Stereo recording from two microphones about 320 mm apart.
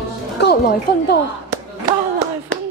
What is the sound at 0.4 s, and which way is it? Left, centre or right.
Music, left.